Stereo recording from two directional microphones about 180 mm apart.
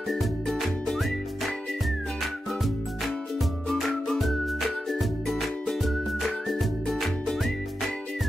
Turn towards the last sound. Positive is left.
turn(degrees=0)  # may be behind; listen again after turning